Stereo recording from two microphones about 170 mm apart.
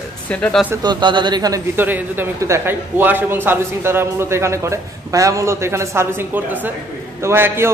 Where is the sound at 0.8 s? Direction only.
25° right (ahead or behind).